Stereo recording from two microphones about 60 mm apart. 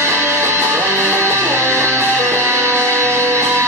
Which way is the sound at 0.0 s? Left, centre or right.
Right.